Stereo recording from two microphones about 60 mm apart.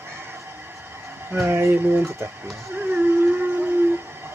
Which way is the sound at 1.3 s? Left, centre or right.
Right.